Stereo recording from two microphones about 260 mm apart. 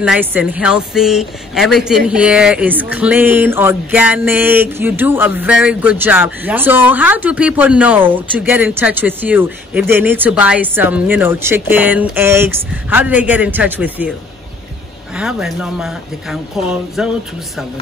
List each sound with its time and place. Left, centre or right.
0.0 s a woman's voice: centre
15.1 s speech: centre